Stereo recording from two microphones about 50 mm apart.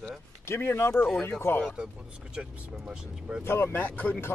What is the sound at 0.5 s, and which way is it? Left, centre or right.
Speech, left.